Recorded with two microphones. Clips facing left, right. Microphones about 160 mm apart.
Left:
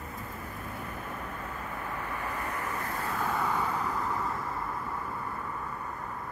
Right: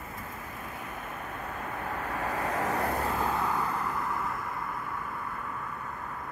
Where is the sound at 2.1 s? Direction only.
80° right.